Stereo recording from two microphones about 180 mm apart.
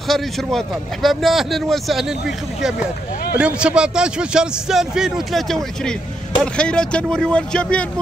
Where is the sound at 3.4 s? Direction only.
5° right (ahead or behind).